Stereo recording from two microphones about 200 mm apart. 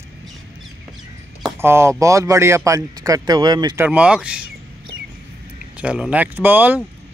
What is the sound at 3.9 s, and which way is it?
Speech, 5° right (ahead or behind).